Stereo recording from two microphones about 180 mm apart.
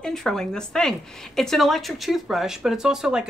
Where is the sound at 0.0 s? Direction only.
5° left (ahead or behind).